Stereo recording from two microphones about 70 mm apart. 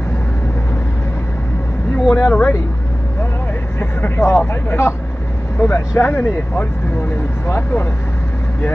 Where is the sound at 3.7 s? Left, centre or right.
Left.